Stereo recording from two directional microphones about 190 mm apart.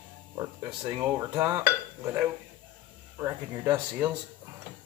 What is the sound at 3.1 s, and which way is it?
Speech, 15° right (ahead or behind).